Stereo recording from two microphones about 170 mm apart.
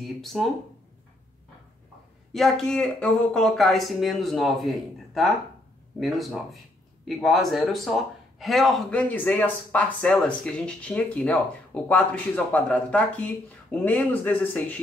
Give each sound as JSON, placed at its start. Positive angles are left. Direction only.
{"t": 0.0, "sound": "speech", "side_deg": 0}
{"t": 2.3, "sound": "speech", "side_deg": 0}